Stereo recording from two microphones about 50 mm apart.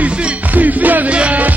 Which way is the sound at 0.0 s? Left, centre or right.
Right.